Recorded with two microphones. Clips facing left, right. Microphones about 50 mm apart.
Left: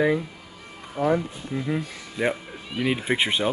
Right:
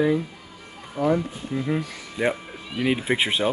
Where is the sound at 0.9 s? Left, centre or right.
Centre.